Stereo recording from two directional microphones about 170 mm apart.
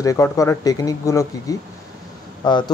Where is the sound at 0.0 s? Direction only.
20° left (ahead or behind).